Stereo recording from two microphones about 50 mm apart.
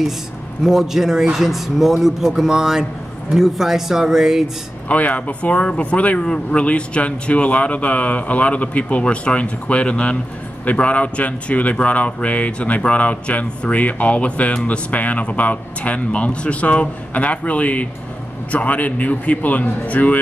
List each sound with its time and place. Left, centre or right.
0.7 s speech: centre
4.8 s a man's voice: left